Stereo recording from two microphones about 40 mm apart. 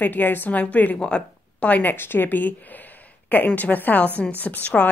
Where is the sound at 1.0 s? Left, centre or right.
Left.